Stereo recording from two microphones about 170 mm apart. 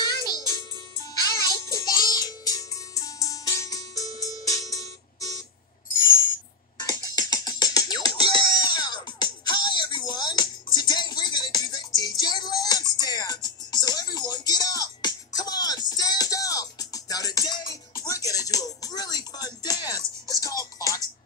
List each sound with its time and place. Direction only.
0.0 s music: 20° left (ahead or behind)
6.8 s music: 20° left (ahead or behind)